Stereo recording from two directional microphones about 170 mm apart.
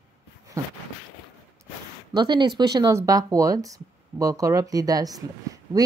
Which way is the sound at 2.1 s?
25° right (ahead or behind).